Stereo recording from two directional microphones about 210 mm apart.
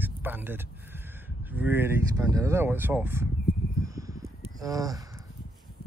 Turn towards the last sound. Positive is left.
turn(degrees=-15)  # may be behind; listen again after turning